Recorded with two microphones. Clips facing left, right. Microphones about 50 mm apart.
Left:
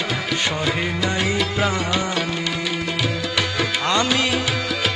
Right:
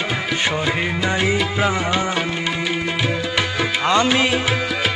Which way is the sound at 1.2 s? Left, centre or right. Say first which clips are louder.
Right 2 dB; centre.